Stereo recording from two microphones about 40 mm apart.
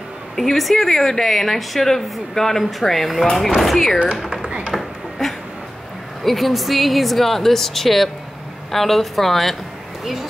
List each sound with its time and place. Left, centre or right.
0.4 s a woman's voice: centre
4.5 s a sound: right
6.2 s a woman's voice: centre